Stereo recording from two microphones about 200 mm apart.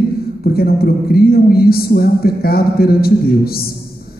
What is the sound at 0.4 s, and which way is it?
A woman's voice, 50° left (ahead or behind).